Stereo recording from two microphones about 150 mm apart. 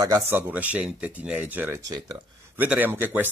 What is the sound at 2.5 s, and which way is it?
Speech, 10° right (ahead or behind).